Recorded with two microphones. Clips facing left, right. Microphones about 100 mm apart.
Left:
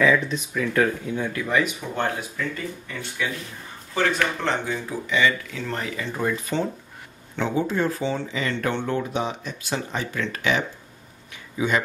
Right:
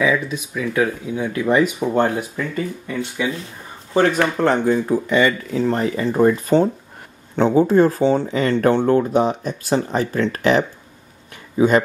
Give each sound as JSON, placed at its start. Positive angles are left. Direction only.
{"t": 0.0, "sound": "speech", "side_deg": -5}
{"t": 3.9, "sound": "speech", "side_deg": -30}
{"t": 4.4, "sound": "speech", "side_deg": -45}